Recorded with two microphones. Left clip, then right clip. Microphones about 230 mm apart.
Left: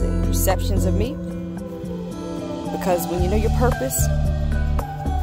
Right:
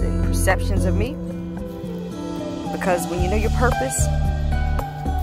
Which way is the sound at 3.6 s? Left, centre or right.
Centre.